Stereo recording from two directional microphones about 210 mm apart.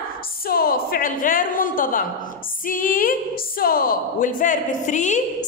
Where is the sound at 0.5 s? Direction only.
45° left (ahead or behind).